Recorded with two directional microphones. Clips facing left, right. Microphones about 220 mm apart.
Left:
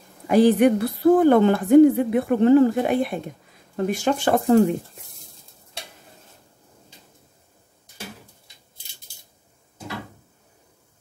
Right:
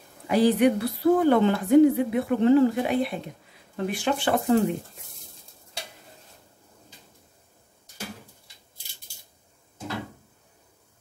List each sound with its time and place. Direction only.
0.3 s a woman's voice: 50° left (ahead or behind)